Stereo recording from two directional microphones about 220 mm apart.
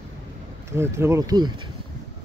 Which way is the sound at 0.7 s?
10° right (ahead or behind).